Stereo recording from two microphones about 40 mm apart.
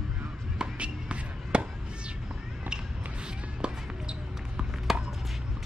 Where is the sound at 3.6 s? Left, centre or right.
Right.